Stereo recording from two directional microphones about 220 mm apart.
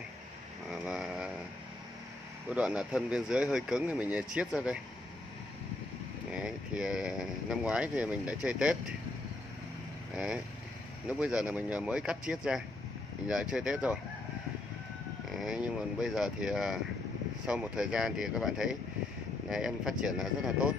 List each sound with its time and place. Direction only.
0.7 s a sound: 5° right (ahead or behind)
2.5 s speech: 5° right (ahead or behind)
6.3 s speech: 5° right (ahead or behind)
10.1 s speech: 5° right (ahead or behind)
15.3 s speech: 5° right (ahead or behind)